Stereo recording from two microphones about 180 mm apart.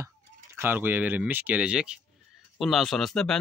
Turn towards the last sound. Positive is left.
turn(degrees=5)  # may be behind; listen again after turning